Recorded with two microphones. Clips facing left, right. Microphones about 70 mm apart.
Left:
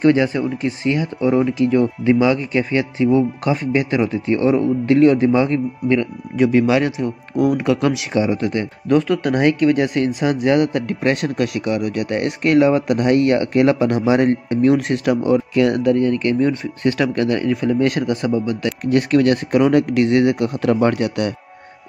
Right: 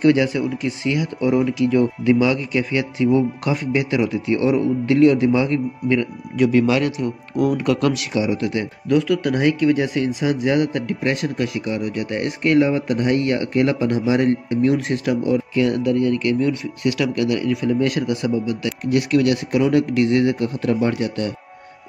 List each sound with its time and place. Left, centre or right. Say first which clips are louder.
0.0 s speech: left 1 dB; left
8.2 s speech: left 3 dB; left
19.6 s speech: left 1 dB; left